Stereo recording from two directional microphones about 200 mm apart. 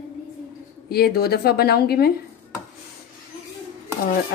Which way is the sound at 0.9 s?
50° left (ahead or behind).